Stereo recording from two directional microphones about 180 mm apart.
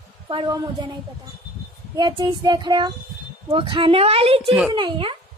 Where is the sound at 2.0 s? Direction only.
25° right (ahead or behind).